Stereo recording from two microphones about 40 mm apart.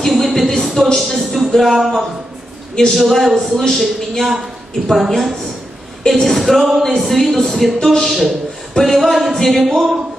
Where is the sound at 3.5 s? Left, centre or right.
Centre.